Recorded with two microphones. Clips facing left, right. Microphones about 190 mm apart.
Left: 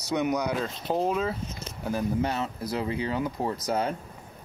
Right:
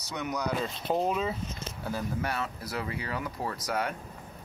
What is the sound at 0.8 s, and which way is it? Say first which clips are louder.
Speech: left 2 dB; centre (ahead or behind).